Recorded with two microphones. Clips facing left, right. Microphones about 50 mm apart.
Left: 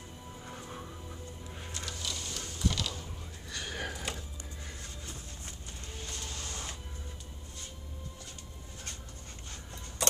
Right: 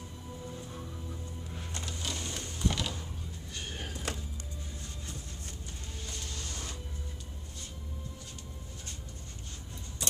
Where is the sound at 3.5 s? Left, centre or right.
Left.